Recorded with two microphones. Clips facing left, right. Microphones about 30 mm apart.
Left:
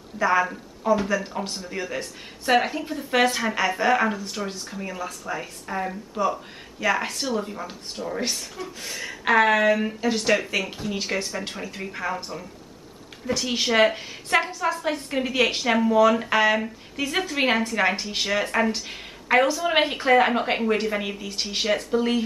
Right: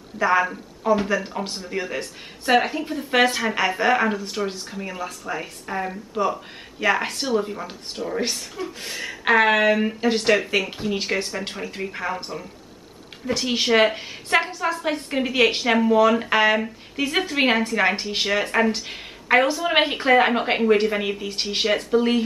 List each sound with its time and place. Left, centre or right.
0.2 s speech: centre
13.3 s speech: centre